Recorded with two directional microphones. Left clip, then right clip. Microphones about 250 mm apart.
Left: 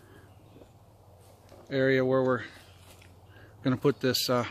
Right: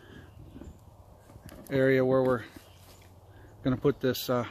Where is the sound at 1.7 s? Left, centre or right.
Right.